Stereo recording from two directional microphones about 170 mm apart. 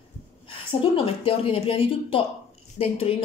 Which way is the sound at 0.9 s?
35° left (ahead or behind).